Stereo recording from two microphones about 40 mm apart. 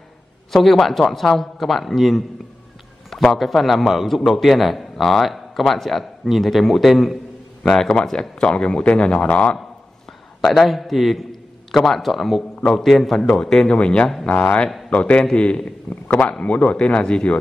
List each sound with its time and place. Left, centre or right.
0.5 s speech: centre
3.3 s speech: centre
7.6 s a man's voice: centre
10.5 s speech: centre
13.7 s a man's voice: left
15.2 s a man's voice: left
15.9 s speech: left
16.3 s a man's voice: left